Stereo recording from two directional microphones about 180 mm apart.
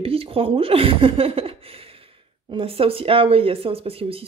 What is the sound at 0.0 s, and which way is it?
Speech, 30° right (ahead or behind).